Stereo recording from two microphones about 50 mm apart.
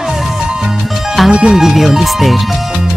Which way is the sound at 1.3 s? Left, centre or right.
Centre.